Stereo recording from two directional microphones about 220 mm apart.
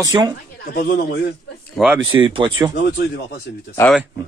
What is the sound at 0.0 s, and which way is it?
Speech, 15° right (ahead or behind).